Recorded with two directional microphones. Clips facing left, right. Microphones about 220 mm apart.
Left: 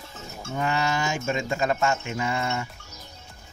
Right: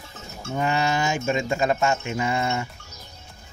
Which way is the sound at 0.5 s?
25° right (ahead or behind).